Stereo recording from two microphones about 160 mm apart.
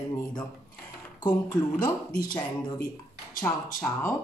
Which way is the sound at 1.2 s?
25° left (ahead or behind).